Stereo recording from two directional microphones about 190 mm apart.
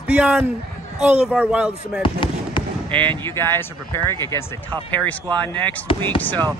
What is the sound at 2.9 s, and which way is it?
Speech, 25° right (ahead or behind).